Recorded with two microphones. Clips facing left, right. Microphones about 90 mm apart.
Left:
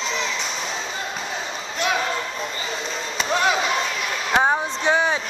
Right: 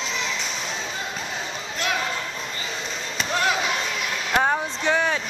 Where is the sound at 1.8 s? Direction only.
Centre (ahead or behind).